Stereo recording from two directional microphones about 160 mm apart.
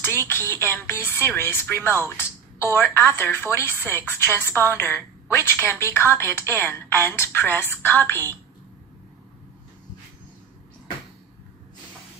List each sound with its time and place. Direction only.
0.2 s speech: 15° left (ahead or behind)